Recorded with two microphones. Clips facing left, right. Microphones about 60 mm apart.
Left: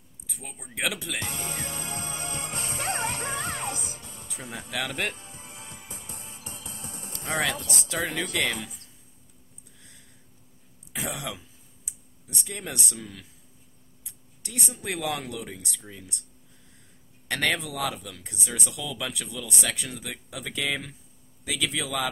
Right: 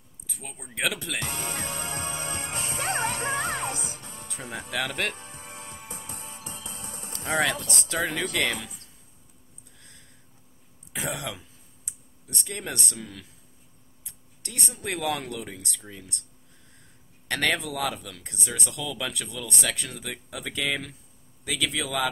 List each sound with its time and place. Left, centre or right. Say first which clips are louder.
0.3 s speech: right 1 dB; centre
1.2 s music: right 2 dB; right
1.8 s music: right 2 dB; right
4.8 s speech: left 1 dB; centre
5.1 s music: right 3 dB; right
7.5 s speech: right 1 dB; right
7.9 s speech: right 2 dB; centre
9.8 s a sound: right 1 dB; centre
10.9 s speech: right 1 dB; centre
17.3 s speech: right 1 dB; centre